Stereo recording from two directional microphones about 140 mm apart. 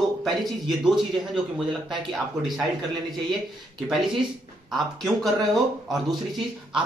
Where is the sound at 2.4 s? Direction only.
Centre (ahead or behind).